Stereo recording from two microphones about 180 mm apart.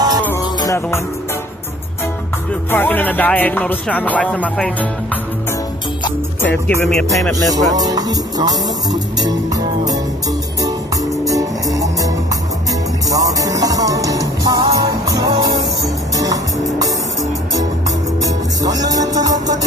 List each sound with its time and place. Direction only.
0.4 s music: 20° left (ahead or behind)
2.7 s music: 10° left (ahead or behind)
6.4 s music: 10° left (ahead or behind)
7.4 s music: 20° right (ahead or behind)
11.2 s music: 20° right (ahead or behind)